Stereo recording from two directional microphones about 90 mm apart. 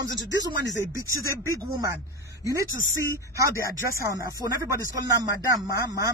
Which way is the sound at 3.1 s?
35° right (ahead or behind).